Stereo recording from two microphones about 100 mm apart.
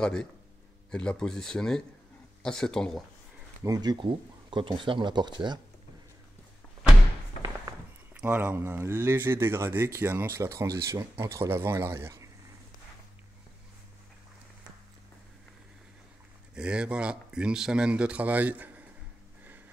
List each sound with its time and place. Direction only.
0.0 s speech: 5° left (ahead or behind)
3.6 s speech: 40° right (ahead or behind)
8.1 s speech: 20° right (ahead or behind)
16.5 s speech: 10° right (ahead or behind)